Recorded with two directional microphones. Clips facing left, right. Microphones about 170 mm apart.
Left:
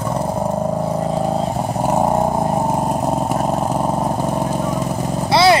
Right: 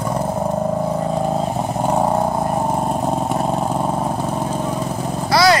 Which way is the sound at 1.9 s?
10° left (ahead or behind).